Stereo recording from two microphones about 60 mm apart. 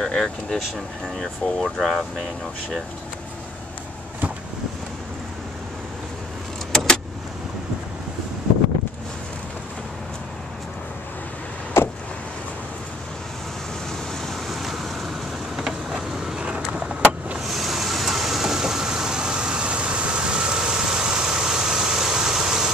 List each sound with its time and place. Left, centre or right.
0.0 s speech: centre
11.7 s vehicle: left
14.2 s vehicle: centre
17.4 s vehicle: centre